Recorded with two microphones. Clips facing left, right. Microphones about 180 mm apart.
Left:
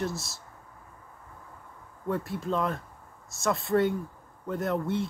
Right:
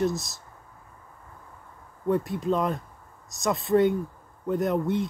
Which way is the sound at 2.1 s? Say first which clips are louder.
Right 5 dB; 20° right (ahead or behind).